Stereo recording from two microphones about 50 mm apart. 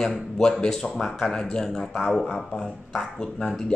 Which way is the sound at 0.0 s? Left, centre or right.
Centre.